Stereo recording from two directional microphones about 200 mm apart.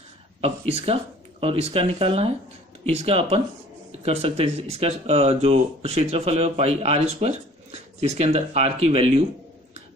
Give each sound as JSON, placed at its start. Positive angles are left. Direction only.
{"t": 0.4, "sound": "speech", "side_deg": -30}